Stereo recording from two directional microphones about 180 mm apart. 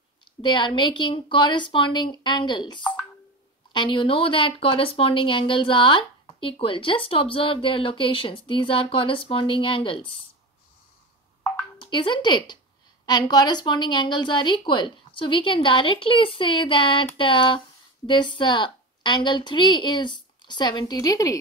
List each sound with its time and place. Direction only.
0.4 s speech: 25° left (ahead or behind)
11.8 s speech: 25° left (ahead or behind)